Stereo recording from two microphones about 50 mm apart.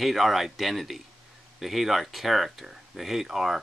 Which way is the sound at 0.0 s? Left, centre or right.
Centre.